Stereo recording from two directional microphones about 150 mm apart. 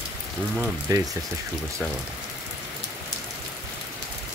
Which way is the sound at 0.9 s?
25° right (ahead or behind).